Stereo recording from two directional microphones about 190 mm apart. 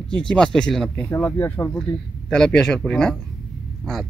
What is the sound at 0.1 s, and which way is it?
Speech, 5° left (ahead or behind).